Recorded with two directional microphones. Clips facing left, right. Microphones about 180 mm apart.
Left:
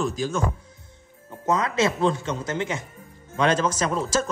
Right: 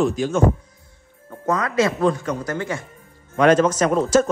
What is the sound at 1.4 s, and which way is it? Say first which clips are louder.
Speech: right 2 dB; 25° left (ahead or behind).